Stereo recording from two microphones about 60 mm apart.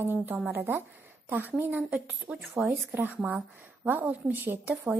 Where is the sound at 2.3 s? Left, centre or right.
Centre.